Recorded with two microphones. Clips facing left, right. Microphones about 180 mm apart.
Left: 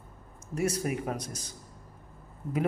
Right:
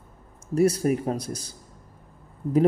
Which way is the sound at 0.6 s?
35° right (ahead or behind).